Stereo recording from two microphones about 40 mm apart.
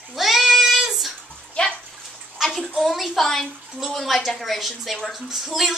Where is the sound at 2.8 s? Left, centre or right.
Centre.